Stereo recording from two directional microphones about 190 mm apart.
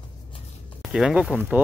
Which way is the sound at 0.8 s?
Centre (ahead or behind).